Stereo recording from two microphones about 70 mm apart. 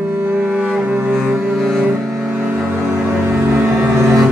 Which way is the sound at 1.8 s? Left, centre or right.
Right.